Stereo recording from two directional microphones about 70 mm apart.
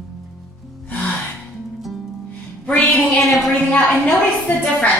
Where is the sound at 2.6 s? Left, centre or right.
Centre.